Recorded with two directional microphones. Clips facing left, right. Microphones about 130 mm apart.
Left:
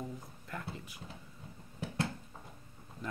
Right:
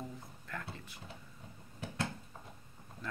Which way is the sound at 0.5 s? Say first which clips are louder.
Left 2 dB; 20° left (ahead or behind).